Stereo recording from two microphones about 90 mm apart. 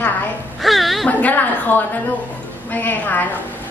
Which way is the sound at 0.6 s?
Centre (ahead or behind).